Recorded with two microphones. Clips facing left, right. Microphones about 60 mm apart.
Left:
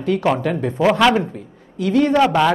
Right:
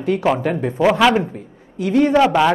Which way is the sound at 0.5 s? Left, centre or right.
Centre.